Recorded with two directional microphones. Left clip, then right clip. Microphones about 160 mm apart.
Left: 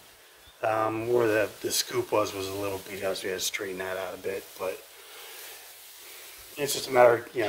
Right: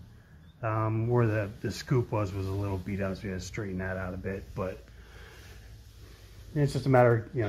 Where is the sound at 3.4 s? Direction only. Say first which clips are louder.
Left 6 dB; 35° left (ahead or behind).